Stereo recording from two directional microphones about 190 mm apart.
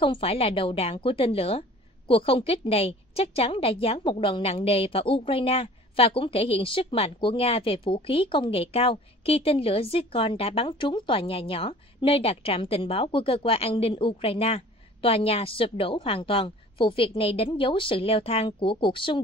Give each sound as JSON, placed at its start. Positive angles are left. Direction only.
{"t": 0.0, "sound": "a woman's voice", "side_deg": 30}